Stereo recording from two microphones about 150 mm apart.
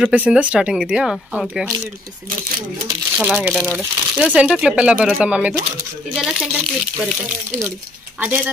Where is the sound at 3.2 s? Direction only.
5° right (ahead or behind).